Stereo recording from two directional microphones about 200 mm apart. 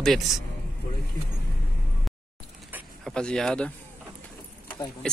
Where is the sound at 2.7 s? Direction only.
Centre (ahead or behind).